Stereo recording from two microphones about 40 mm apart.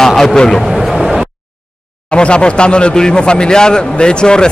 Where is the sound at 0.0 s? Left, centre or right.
Centre.